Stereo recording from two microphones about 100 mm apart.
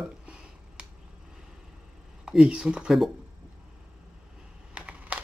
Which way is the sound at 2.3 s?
10° right (ahead or behind).